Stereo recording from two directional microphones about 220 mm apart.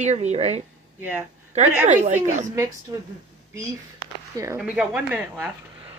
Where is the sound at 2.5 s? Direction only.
15° right (ahead or behind).